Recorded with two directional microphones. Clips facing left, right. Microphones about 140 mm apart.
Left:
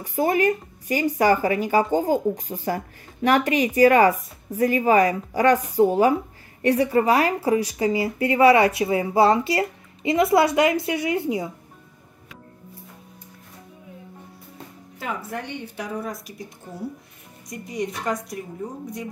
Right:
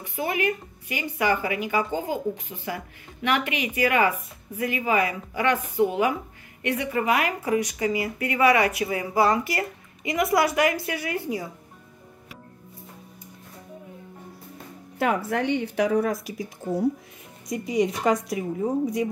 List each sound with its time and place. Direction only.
0.0 s a woman's voice: 40° left (ahead or behind); by 11.4 s 20° left (ahead or behind)
15.0 s speech: 80° right
17.5 s speech: 90° right